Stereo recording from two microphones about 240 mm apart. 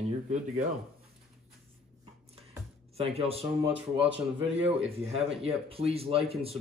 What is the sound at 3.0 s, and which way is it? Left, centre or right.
Speech, right.